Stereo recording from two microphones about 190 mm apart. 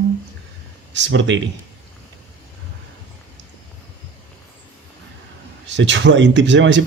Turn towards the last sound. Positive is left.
turn(degrees=-70)  # may be behind; listen again after turning